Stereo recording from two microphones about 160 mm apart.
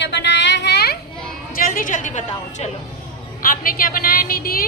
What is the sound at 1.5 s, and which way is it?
A woman's voice, 60° left (ahead or behind).